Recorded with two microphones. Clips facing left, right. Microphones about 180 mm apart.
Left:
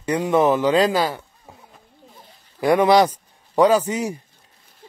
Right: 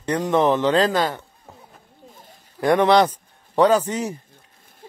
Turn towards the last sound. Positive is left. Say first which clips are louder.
# left 1 dB
turn(degrees=10)  # may be behind; listen again after turning